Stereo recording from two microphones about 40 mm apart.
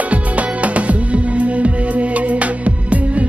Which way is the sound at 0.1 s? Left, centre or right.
Right.